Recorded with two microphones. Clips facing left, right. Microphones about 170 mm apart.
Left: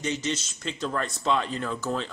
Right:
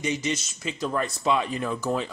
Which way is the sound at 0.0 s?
10° right (ahead or behind).